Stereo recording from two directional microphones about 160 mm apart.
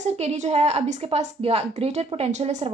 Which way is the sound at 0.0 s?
40° right (ahead or behind).